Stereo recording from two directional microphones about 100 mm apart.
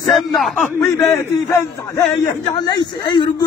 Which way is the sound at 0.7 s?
35° left (ahead or behind).